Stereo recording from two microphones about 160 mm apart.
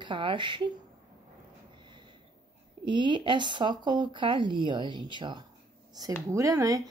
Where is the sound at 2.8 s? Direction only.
30° right (ahead or behind).